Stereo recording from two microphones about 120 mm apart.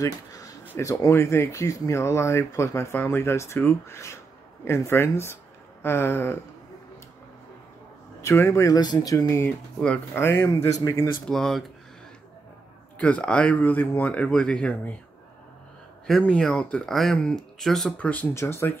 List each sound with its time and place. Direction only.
0.0 s a sound: 30° left (ahead or behind)
0.7 s speech: 25° left (ahead or behind)
8.2 s speech: 20° left (ahead or behind)
11.2 s speech: 5° left (ahead or behind)
12.9 s speech: 10° left (ahead or behind)
16.1 s speech: 5° left (ahead or behind)
18.3 s speech: 20° left (ahead or behind)